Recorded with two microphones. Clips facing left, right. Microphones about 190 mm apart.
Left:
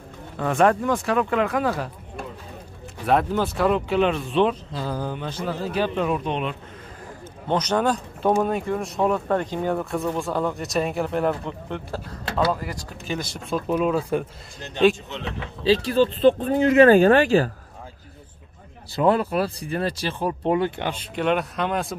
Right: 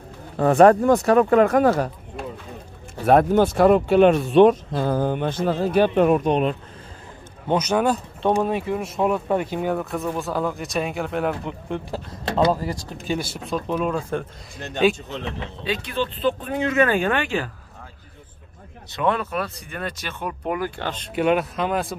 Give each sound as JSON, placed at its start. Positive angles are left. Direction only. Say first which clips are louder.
{"t": 0.4, "sound": "speech", "louder": "right 6 dB", "side_deg": -40}
{"t": 3.1, "sound": "speech", "louder": "right 5 dB", "side_deg": -50}
{"t": 7.4, "sound": "speech", "louder": "right 2 dB", "side_deg": -10}
{"t": 11.7, "sound": "speech", "louder": "right 2 dB", "side_deg": -15}
{"t": 13.2, "sound": "speech", "louder": "even", "side_deg": -5}
{"t": 15.6, "sound": "speech", "louder": "left 7 dB", "side_deg": 30}
{"t": 18.9, "sound": "speech", "louder": "left 3 dB", "side_deg": 30}
{"t": 21.1, "sound": "speech", "louder": "right 4 dB", "side_deg": -5}